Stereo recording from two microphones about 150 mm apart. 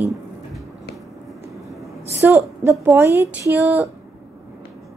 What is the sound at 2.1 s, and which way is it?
A woman's voice, 15° right (ahead or behind).